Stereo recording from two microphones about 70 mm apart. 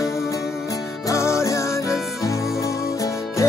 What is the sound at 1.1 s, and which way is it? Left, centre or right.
Music, left.